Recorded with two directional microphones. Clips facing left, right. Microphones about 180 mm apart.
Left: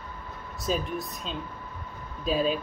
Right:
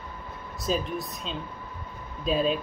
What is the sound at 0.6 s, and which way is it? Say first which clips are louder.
Speech: right 1 dB; centre (ahead or behind).